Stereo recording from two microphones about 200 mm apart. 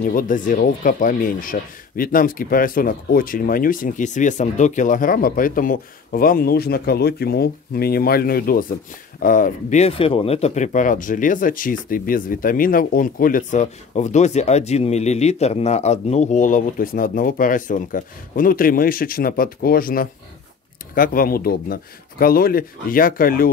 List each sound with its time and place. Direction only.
0.0 s speech: 45° left (ahead or behind)